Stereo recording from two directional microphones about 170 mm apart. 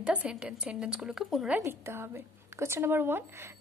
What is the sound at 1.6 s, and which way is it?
Speech, 15° right (ahead or behind).